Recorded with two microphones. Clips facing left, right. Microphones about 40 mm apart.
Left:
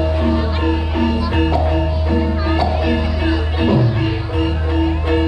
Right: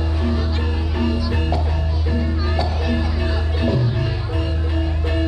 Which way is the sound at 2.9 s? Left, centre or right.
Left.